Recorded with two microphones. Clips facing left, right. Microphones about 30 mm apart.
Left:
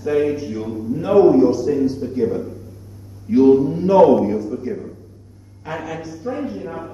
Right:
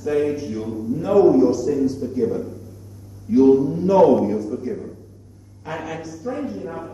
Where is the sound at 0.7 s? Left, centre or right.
Left.